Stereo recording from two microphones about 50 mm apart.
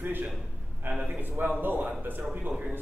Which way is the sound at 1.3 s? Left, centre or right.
Right.